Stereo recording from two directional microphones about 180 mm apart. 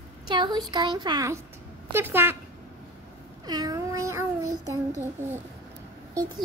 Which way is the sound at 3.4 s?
20° right (ahead or behind).